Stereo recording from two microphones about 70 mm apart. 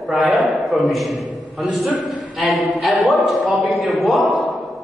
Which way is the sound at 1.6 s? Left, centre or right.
Centre.